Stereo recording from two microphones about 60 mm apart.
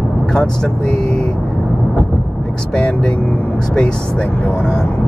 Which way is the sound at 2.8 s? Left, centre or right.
Centre.